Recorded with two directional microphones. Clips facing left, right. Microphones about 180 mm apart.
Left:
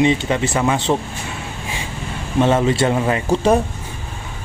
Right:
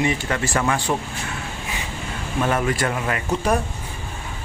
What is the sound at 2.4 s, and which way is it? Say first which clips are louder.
Speech: left 6 dB; 25° left (ahead or behind).